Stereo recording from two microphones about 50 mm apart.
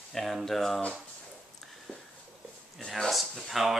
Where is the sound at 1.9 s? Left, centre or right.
Centre.